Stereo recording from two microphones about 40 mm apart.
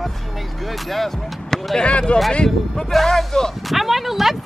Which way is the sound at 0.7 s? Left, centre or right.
Centre.